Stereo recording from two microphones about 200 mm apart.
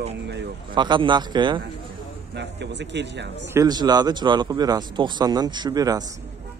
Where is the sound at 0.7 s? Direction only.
25° right (ahead or behind).